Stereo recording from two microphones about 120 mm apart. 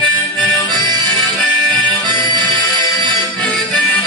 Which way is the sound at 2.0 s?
40° right (ahead or behind).